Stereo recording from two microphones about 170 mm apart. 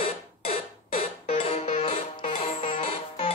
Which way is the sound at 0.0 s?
35° left (ahead or behind).